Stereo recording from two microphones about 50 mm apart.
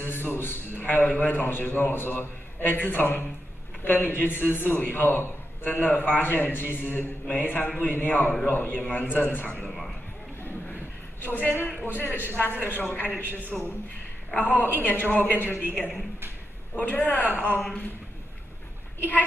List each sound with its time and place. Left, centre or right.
0.0 s a man's voice: left
1.4 s a man's voice: left
9.6 s speech: centre
11.2 s a man's voice: left
13.5 s a man's voice: centre
14.4 s a man's voice: left
17.4 s speech: left
18.9 s speech: left